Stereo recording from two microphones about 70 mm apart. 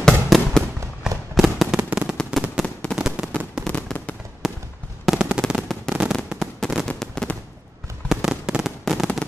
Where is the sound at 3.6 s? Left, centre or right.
Centre.